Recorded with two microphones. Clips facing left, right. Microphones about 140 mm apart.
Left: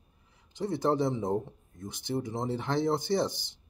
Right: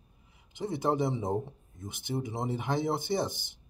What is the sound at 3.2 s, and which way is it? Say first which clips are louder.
Speech: left 2 dB; 50° right (ahead or behind).